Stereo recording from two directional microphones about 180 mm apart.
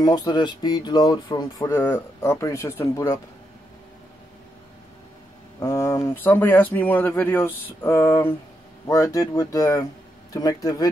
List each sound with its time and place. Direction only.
0.0 s speech: 20° left (ahead or behind)
5.6 s speech: 20° left (ahead or behind)